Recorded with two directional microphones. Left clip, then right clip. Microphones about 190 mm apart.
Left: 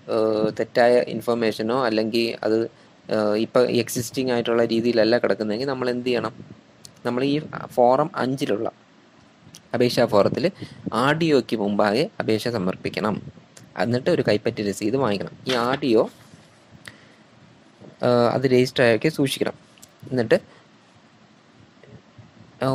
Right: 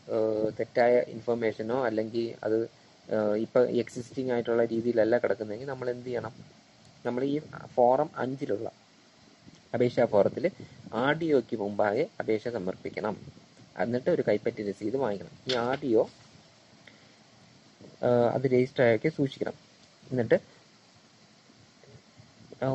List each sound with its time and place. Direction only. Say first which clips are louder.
0.1 s speech: left 7 dB; 25° left (ahead or behind)
9.7 s speech: left 6 dB; 25° left (ahead or behind)
18.2 s speech: left 6 dB; 25° left (ahead or behind)